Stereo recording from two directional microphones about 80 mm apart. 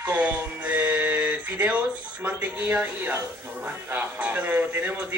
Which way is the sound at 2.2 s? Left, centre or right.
Right.